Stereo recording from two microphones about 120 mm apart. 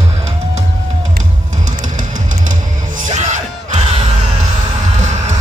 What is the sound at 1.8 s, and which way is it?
Music, 90° right.